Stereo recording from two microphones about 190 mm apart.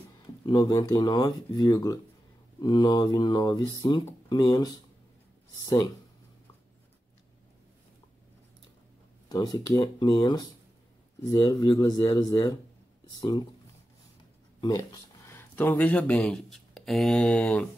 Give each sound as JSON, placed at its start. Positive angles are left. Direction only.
{"t": 0.5, "sound": "speech", "side_deg": 20}
{"t": 9.3, "sound": "speech", "side_deg": 20}
{"t": 15.2, "sound": "speech", "side_deg": 10}